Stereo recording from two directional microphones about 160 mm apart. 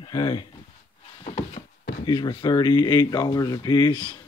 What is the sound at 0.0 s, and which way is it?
Speech, 30° left (ahead or behind).